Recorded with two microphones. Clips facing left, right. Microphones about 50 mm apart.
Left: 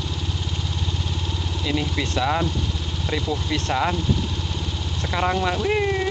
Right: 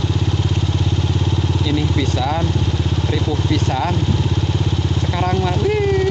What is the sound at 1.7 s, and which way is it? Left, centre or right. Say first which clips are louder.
Speech: right 3 dB; centre.